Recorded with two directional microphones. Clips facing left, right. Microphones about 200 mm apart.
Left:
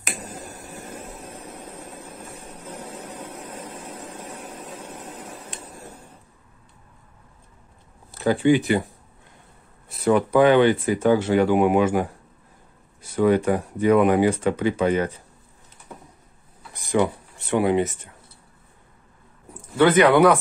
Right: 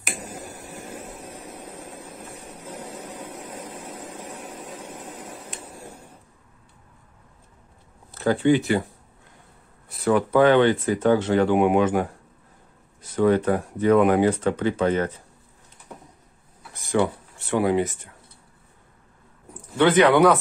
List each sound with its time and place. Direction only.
0.0 s finger snapping: 10° right (ahead or behind)
5.5 s a sound: 10° right (ahead or behind)
8.1 s speech: 10° left (ahead or behind)
9.8 s speech: 20° left (ahead or behind)
16.7 s speech: 15° left (ahead or behind)
19.5 s speech: 10° left (ahead or behind)